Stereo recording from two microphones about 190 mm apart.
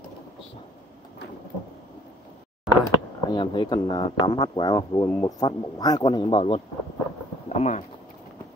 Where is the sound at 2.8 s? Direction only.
25° left (ahead or behind).